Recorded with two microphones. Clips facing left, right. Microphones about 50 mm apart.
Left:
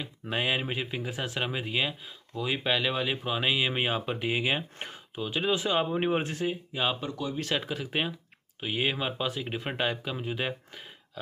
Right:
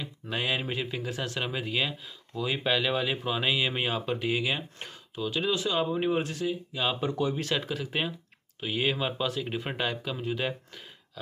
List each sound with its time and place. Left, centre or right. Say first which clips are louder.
0.0 s speech: left 1 dB; centre; by 6.6 s left
7.1 s speech: right 5 dB; right
7.5 s speech: even; centre